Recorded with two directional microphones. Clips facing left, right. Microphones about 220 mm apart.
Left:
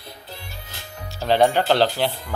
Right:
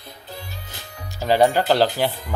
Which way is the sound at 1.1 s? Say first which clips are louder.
Right 1 dB; 10° right (ahead or behind).